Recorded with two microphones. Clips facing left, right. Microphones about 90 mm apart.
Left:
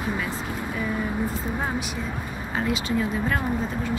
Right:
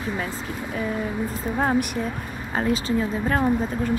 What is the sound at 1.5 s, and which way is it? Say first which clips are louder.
Speech: right 6 dB; 45° right (ahead or behind).